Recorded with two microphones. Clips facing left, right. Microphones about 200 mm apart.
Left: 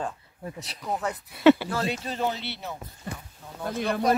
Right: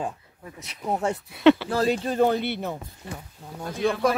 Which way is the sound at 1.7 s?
35° right (ahead or behind).